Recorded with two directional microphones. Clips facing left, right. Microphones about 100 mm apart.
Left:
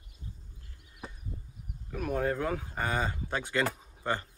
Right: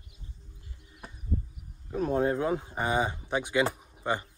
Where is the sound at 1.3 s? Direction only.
40° right (ahead or behind).